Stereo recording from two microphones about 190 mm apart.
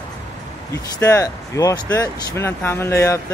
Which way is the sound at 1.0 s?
15° left (ahead or behind).